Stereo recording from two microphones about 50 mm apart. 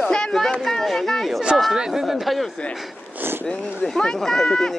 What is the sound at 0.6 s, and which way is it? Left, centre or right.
Speech, centre.